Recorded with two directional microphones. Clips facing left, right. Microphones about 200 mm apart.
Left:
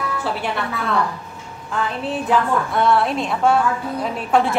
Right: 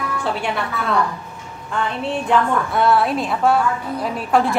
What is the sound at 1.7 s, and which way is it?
A woman's voice, 5° left (ahead or behind).